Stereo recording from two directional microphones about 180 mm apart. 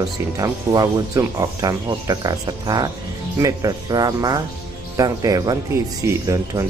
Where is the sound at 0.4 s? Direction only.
20° right (ahead or behind).